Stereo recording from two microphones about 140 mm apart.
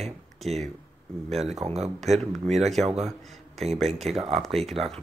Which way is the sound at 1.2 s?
Centre (ahead or behind).